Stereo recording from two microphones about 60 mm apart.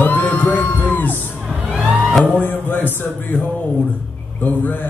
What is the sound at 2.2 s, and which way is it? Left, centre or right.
A man's voice, left.